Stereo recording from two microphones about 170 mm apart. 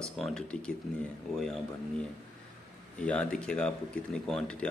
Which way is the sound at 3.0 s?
5° left (ahead or behind).